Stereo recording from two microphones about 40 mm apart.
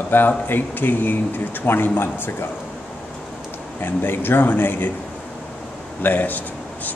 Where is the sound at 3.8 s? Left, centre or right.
Left.